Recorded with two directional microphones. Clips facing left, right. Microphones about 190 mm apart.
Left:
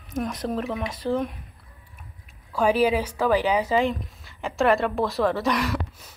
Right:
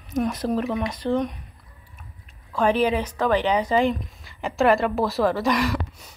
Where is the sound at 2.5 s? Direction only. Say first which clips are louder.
Even; 10° left (ahead or behind).